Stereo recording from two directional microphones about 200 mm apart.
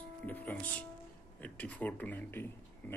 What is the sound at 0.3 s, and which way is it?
Speech, 10° left (ahead or behind).